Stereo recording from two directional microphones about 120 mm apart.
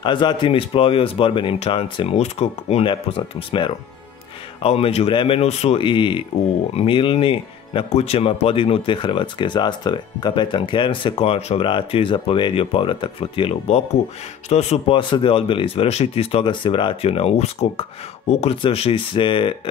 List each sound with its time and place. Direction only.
0.0 s speech: 40° left (ahead or behind); by 2.9 s 60° left (ahead or behind)
2.9 s speech: 50° left (ahead or behind)
15.0 s speech: 45° left (ahead or behind)